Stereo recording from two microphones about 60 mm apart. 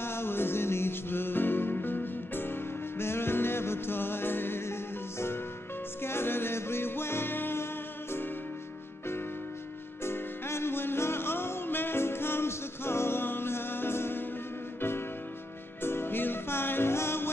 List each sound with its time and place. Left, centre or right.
0.0 s music: left
6.0 s music: left
10.0 s music: left